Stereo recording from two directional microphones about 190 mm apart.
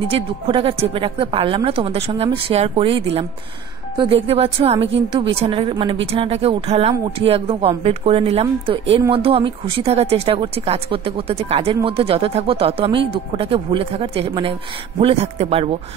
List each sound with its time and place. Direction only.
0.1 s speech: 30° right (ahead or behind)